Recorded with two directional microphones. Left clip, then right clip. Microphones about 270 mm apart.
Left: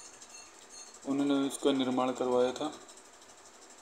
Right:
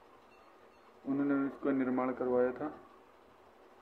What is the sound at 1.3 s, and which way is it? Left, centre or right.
Speech, left.